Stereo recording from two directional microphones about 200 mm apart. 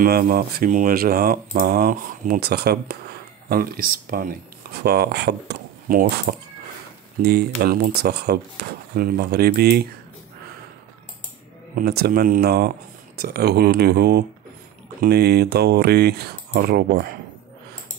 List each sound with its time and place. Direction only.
0.0 s speech: 45° right (ahead or behind)
11.7 s speech: 50° right (ahead or behind)